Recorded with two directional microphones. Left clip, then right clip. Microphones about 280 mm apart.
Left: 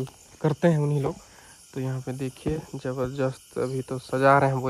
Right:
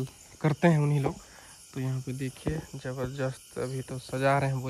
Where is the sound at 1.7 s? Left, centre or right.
Centre.